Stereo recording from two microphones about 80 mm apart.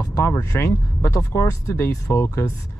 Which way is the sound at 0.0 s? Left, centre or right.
Left.